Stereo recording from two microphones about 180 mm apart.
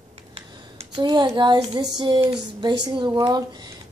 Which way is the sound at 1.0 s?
25° right (ahead or behind).